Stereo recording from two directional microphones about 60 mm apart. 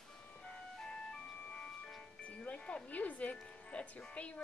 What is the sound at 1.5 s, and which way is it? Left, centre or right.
Music, centre.